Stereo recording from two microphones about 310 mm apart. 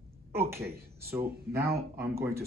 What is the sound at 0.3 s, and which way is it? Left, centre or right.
Speech, centre.